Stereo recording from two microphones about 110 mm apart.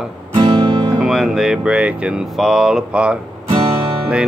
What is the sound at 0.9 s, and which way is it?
Speech, 5° right (ahead or behind).